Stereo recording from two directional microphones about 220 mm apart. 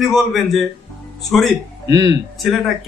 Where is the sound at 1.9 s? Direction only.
15° right (ahead or behind).